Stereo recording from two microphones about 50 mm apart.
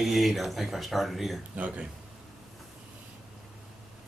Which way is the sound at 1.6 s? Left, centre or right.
Right.